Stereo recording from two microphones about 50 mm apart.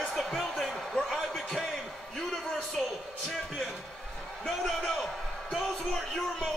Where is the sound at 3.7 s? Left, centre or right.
Centre.